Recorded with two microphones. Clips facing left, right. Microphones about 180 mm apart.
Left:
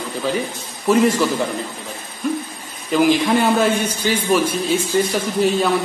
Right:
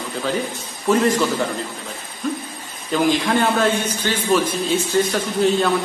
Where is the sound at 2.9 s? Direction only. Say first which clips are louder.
Left 3 dB; 10° left (ahead or behind).